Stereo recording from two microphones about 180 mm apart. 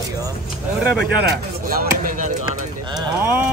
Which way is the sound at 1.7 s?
50° right (ahead or behind).